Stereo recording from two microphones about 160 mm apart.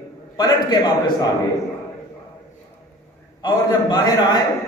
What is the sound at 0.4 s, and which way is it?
Speech, 25° left (ahead or behind).